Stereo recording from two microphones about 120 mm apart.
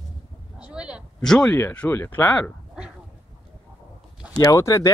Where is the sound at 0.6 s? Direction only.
10° right (ahead or behind).